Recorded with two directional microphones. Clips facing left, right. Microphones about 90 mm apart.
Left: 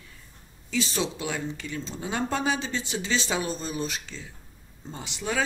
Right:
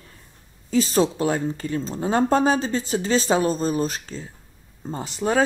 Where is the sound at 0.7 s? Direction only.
40° right (ahead or behind).